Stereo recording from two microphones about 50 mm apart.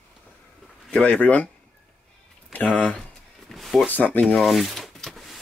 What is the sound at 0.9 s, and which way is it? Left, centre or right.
Speech, left.